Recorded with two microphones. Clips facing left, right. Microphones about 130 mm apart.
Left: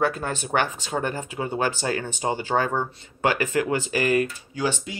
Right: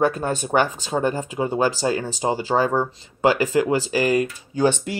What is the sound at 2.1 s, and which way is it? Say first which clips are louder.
Speech: right 3 dB; 30° right (ahead or behind).